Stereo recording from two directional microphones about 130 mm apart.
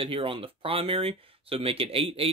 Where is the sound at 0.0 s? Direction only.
45° right (ahead or behind).